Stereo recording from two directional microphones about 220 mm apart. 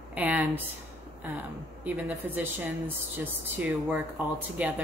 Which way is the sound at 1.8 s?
10° right (ahead or behind).